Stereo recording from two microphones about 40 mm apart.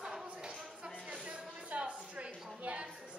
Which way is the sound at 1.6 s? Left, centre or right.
Right.